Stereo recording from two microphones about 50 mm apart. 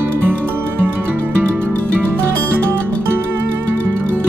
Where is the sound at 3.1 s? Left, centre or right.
Right.